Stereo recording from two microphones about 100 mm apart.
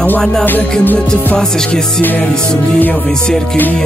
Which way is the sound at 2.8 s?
10° left (ahead or behind).